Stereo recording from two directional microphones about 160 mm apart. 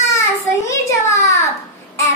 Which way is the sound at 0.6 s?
20° left (ahead or behind).